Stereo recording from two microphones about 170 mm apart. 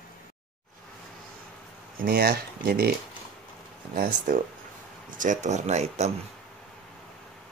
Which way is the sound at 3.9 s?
60° right (ahead or behind).